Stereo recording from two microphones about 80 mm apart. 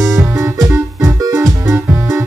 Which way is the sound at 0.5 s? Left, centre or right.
Right.